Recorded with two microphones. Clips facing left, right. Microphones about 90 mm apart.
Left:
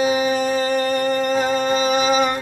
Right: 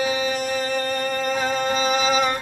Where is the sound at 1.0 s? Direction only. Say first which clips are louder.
Left 4 dB; 20° left (ahead or behind).